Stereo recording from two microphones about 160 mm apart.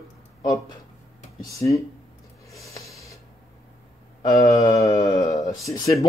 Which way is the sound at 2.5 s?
20° left (ahead or behind).